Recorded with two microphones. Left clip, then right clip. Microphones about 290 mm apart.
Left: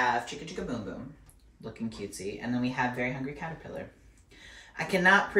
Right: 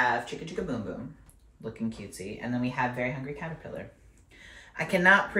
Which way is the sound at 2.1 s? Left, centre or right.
Centre.